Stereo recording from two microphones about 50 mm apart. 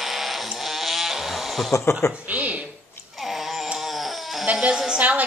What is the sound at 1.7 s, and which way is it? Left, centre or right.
Speech, left.